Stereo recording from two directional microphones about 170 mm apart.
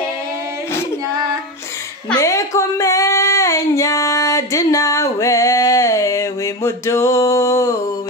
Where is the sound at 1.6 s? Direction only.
15° left (ahead or behind).